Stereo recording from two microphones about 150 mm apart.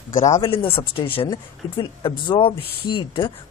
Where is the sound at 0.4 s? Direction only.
35° left (ahead or behind).